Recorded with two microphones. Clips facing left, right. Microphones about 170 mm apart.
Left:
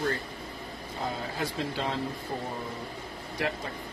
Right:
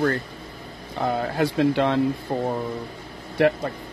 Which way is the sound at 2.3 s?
80° right.